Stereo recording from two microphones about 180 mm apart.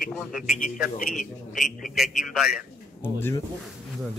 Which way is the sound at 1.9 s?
Centre (ahead or behind).